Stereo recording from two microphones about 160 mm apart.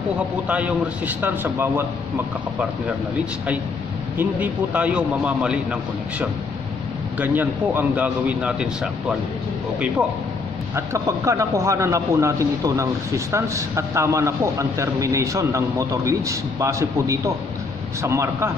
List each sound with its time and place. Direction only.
0.5 s a man's voice: 10° right (ahead or behind)
4.2 s a man's voice: 10° right (ahead or behind)
10.9 s a man's voice: 20° right (ahead or behind)